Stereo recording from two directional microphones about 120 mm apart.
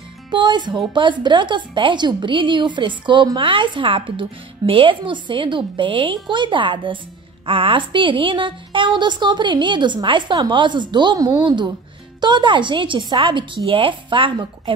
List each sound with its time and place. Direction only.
0.3 s a woman's voice: 40° right (ahead or behind)